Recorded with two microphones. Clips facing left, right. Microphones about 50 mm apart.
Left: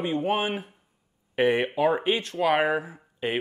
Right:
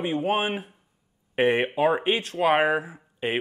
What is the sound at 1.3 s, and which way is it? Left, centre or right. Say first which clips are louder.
Speech: right 1 dB; right.